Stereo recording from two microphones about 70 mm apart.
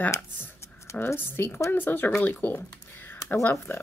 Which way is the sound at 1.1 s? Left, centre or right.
Left.